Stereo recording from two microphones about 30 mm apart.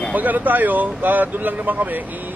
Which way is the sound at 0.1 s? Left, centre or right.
Right.